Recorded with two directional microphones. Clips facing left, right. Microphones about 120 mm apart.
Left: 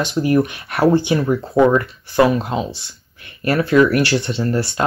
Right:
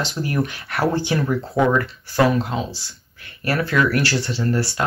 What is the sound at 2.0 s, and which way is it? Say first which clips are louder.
Speech: left 3 dB; 20° left (ahead or behind).